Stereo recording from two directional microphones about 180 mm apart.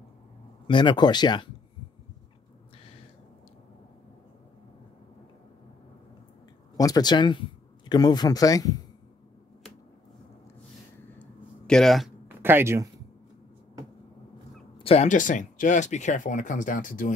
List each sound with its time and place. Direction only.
0.7 s speech: 25° left (ahead or behind)
6.8 s speech: 20° left (ahead or behind)
11.1 s a sound: 5° left (ahead or behind)
12.4 s speech: 10° right (ahead or behind)
14.8 s speech: 35° left (ahead or behind)